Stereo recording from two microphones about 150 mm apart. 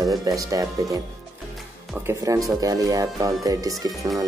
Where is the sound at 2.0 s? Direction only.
20° right (ahead or behind).